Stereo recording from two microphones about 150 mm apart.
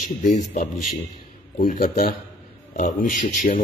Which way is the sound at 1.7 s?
70° left (ahead or behind).